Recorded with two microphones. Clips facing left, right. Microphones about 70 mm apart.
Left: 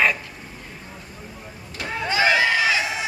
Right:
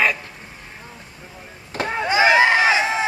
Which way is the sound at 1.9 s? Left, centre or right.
Right.